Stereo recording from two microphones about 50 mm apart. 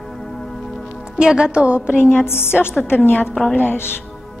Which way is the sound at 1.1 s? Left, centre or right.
Centre.